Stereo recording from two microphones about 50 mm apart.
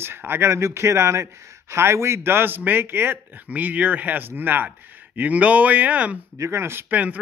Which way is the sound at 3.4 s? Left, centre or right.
Right.